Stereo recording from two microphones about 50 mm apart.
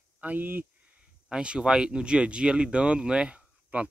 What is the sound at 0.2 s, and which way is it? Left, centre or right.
Speech, right.